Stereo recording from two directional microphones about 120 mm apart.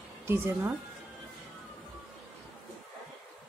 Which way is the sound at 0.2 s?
20° right (ahead or behind).